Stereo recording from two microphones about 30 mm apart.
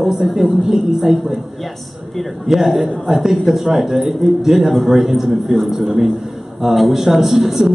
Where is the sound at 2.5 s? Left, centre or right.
Centre.